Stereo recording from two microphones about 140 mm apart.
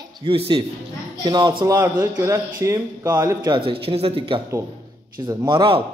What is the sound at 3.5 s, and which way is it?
Speech, 40° right (ahead or behind).